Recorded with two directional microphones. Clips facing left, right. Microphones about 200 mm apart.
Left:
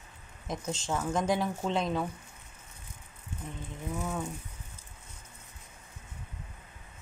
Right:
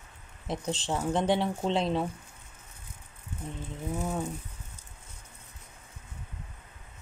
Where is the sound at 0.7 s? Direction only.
30° right (ahead or behind).